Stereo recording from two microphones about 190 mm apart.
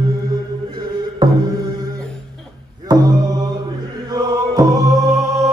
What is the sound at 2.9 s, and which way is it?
Mantra, 20° right (ahead or behind).